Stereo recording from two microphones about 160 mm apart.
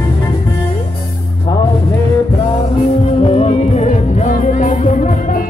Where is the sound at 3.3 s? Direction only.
40° left (ahead or behind).